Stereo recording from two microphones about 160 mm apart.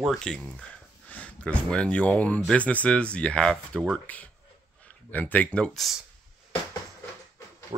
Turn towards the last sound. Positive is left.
turn(degrees=-30)  # may be behind; listen again after turning